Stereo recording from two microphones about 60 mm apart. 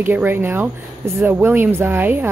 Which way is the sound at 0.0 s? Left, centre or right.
Right.